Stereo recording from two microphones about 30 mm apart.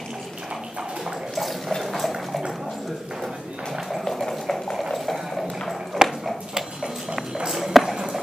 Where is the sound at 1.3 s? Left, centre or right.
Centre.